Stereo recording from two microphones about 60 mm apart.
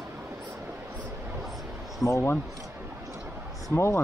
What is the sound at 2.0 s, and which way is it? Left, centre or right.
Speech, left.